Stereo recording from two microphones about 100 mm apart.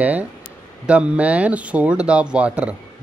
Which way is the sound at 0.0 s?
15° right (ahead or behind).